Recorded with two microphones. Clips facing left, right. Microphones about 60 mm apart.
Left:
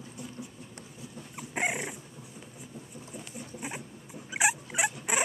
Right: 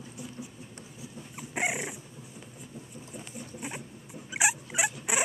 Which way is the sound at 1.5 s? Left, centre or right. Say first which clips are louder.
Even; centre.